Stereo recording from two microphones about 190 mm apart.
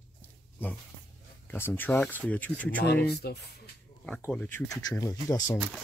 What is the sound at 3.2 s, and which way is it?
Speech, 55° left (ahead or behind).